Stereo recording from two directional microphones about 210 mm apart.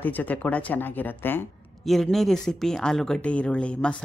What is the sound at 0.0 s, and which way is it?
Speech, 10° left (ahead or behind).